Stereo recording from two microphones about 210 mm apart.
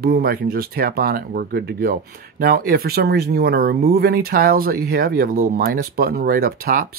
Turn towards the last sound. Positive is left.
turn(degrees=-45)  # may be behind; listen again after turning